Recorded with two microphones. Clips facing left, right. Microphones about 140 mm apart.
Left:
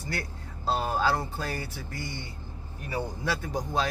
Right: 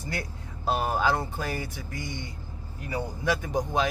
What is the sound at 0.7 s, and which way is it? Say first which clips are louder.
Speech: right 1 dB; 15° right (ahead or behind).